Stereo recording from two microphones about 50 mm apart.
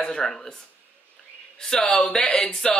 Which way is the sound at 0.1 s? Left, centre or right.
Centre.